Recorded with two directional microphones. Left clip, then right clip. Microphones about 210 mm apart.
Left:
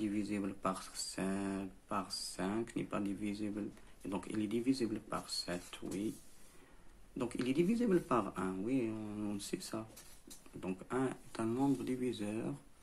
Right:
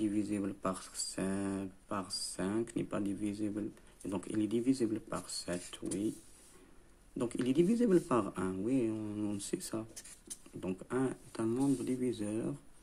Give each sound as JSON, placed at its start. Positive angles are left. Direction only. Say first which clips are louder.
{"t": 0.0, "sound": "speech", "louder": "right 4 dB", "side_deg": -20}
{"t": 7.2, "sound": "speech", "louder": "right 4 dB", "side_deg": -25}